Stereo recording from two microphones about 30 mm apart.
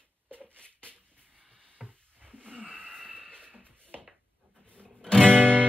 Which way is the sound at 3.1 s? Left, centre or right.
Right.